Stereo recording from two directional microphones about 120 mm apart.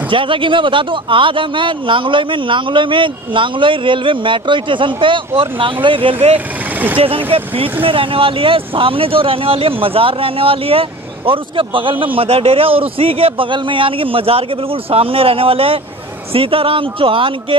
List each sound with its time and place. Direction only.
0.1 s a man's voice: 45° right (ahead or behind)